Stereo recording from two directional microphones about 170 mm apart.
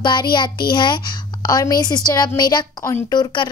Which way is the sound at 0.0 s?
25° left (ahead or behind).